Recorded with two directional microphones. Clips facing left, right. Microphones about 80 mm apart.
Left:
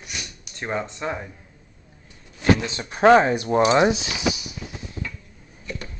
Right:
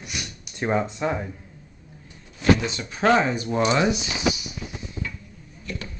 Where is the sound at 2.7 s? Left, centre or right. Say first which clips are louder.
Left 5 dB; left.